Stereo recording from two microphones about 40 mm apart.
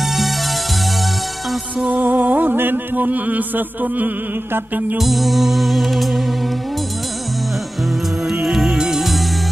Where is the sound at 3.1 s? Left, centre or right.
Right.